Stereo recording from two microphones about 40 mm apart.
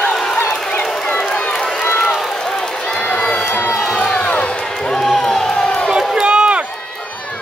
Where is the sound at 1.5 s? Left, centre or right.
Centre.